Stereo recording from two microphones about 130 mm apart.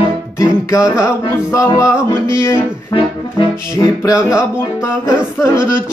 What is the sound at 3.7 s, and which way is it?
Music, 25° left (ahead or behind).